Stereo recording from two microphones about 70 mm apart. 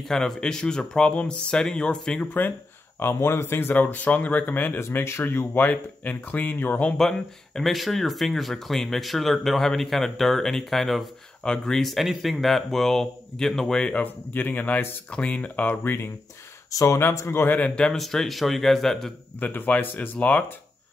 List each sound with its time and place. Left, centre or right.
0.0 s speech: centre
3.0 s a man's voice: left
5.6 s speech: left
7.0 s speech: centre
14.0 s speech: left
15.0 s speech: centre
16.7 s speech: left
17.0 s a man's voice: left
17.6 s speech: centre
17.9 s speech: centre
19.4 s speech: left